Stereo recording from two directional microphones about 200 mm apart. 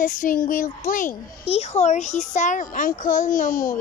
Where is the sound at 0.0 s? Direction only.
40° left (ahead or behind).